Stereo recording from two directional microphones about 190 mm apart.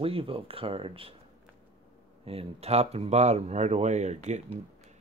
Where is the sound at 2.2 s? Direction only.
30° right (ahead or behind).